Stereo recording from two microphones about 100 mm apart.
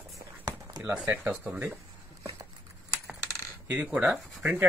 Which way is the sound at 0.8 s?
10° right (ahead or behind).